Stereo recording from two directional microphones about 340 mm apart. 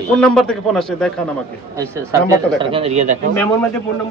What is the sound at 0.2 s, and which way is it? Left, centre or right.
A man's voice, centre.